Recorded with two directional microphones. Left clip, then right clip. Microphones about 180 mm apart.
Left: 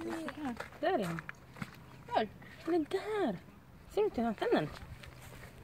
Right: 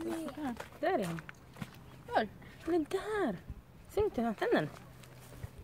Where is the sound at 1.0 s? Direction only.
30° right (ahead or behind).